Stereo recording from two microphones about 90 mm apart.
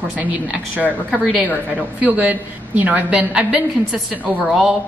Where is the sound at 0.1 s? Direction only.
20° right (ahead or behind).